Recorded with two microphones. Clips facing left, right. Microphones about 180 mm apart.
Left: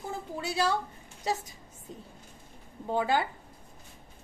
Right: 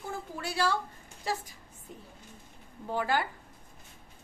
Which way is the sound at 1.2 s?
20° left (ahead or behind).